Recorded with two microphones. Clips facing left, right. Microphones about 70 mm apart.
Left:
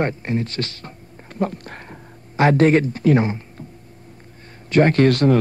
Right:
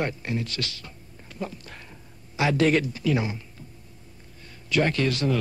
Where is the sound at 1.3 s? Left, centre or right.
Left.